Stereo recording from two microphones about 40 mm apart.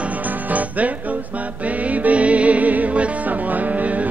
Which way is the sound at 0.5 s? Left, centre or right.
Right.